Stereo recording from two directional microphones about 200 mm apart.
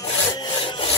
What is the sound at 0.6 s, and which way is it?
Sawing, 25° left (ahead or behind).